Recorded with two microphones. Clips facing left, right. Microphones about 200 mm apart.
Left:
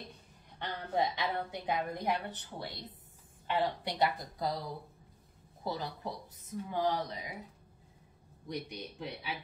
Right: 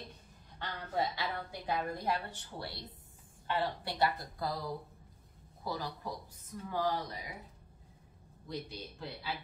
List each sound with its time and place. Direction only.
0.6 s a woman's voice: 20° left (ahead or behind)
5.6 s a woman's voice: 20° left (ahead or behind)
8.5 s speech: 20° left (ahead or behind)